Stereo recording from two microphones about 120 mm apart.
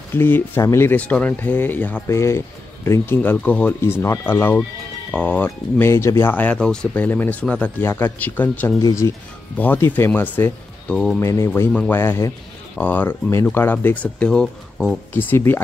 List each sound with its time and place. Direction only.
0.1 s speech: 20° left (ahead or behind)
8.8 s speech: 25° left (ahead or behind)
9.6 s speech: 15° left (ahead or behind)